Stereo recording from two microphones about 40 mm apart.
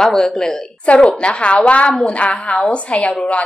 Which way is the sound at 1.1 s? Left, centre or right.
Left.